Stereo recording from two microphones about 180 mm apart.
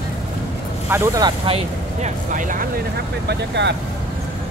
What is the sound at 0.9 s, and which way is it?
Speech, 15° right (ahead or behind).